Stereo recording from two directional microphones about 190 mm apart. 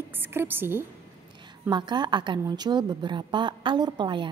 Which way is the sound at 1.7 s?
25° right (ahead or behind).